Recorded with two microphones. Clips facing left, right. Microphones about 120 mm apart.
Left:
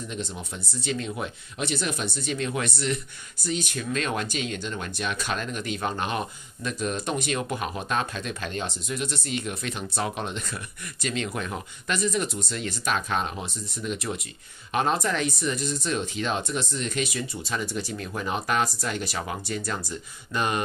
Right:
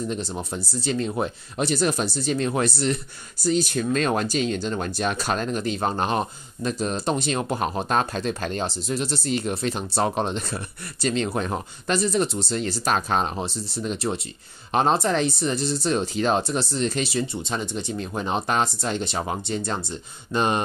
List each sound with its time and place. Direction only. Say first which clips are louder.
0.1 s speech: right 5 dB; 35° right (ahead or behind)